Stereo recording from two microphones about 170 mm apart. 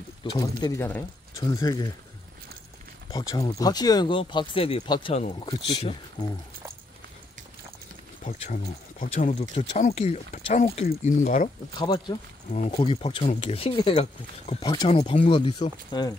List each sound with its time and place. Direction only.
0.2 s speech: 25° left (ahead or behind)
3.1 s speech: 20° left (ahead or behind)
8.2 s speech: 55° left (ahead or behind)
11.7 s speech: 25° left (ahead or behind)
12.4 s speech: 40° left (ahead or behind); by 14.9 s 25° left (ahead or behind)
14.9 s speech: 40° left (ahead or behind)